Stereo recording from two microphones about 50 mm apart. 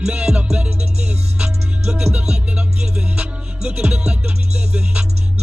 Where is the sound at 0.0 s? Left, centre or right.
Centre.